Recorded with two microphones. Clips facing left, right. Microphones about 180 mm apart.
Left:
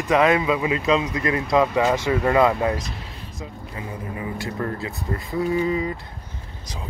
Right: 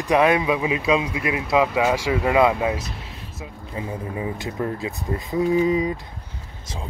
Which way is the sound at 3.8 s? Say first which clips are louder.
Right 4 dB; 20° right (ahead or behind).